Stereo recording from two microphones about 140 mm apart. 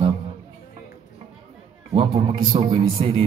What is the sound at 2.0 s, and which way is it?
A man's voice, 35° right (ahead or behind).